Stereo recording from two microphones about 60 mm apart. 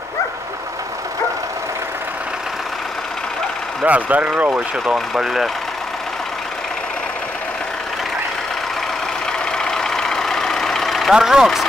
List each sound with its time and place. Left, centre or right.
3.8 s speech: right
4.8 s speech: centre
9.6 s vehicle: centre
11.1 s speech: centre